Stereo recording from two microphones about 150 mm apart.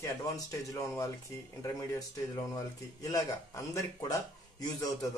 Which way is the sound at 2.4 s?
25° left (ahead or behind).